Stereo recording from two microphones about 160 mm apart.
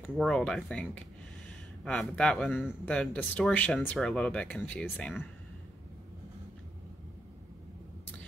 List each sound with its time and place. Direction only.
0.2 s speech: 5° left (ahead or behind)